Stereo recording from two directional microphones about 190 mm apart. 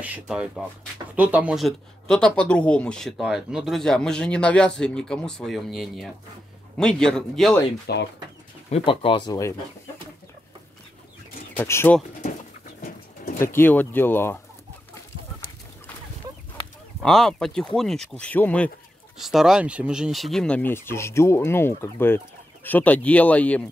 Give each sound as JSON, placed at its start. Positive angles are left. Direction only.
{"t": 0.0, "sound": "speech", "side_deg": -5}
{"t": 7.9, "sound": "speech", "side_deg": 60}
{"t": 8.6, "sound": "speech", "side_deg": 30}
{"t": 11.5, "sound": "speech", "side_deg": 10}
{"t": 12.8, "sound": "bird", "side_deg": 45}
{"t": 13.4, "sound": "speech", "side_deg": 10}
{"t": 17.0, "sound": "speech", "side_deg": 0}